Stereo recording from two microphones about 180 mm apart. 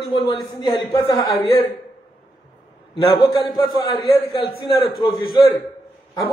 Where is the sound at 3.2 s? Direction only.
20° left (ahead or behind).